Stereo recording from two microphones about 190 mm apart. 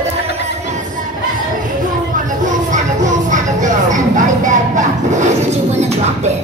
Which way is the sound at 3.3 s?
40° right (ahead or behind).